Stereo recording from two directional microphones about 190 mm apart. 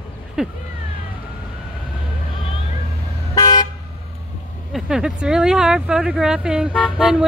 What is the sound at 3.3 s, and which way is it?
Toot, 20° left (ahead or behind).